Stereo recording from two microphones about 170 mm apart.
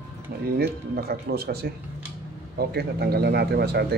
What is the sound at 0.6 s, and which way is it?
A man's voice, 65° right (ahead or behind).